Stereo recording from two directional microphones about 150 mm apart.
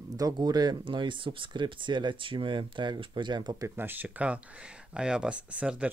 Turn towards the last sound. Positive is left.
turn(degrees=-10)  # may be behind; listen again after turning